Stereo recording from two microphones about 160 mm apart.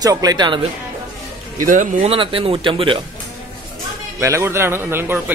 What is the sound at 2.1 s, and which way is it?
Speech, 35° right (ahead or behind).